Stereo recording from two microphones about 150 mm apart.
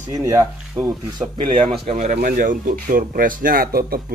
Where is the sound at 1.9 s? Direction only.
60° right (ahead or behind).